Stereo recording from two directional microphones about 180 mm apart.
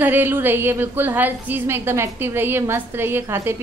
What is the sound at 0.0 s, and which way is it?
A woman's voice, 10° right (ahead or behind).